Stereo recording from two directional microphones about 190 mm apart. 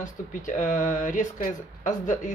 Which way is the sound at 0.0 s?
40° left (ahead or behind).